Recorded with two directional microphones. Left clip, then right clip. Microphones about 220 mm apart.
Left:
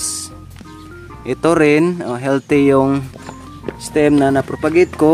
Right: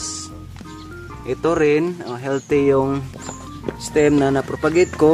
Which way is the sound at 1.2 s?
50° left (ahead or behind).